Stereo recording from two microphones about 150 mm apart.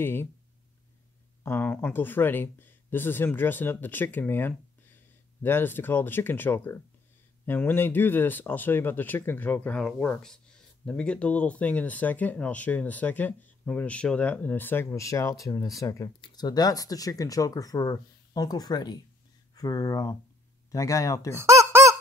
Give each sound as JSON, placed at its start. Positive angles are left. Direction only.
{"t": 0.0, "sound": "speech", "side_deg": 15}
{"t": 1.4, "sound": "speech", "side_deg": 15}
{"t": 21.4, "sound": "a sound", "side_deg": -20}